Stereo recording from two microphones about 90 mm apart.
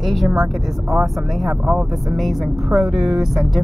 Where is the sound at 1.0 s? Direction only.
5° right (ahead or behind).